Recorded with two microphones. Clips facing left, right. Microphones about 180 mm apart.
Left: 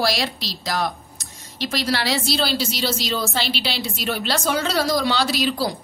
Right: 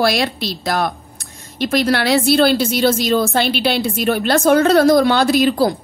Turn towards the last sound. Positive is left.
turn(degrees=-50)  # may be behind; listen again after turning